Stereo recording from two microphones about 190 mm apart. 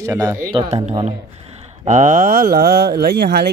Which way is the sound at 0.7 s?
35° right (ahead or behind).